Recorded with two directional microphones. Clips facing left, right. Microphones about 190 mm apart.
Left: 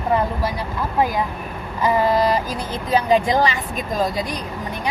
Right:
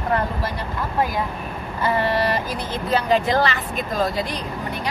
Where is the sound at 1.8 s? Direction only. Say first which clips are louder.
Left 3 dB; 15° left (ahead or behind).